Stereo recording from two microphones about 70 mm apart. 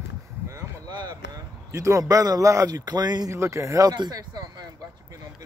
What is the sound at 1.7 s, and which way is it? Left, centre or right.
A man's voice, right.